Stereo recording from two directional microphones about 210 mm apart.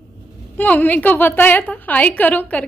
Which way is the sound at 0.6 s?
10° left (ahead or behind).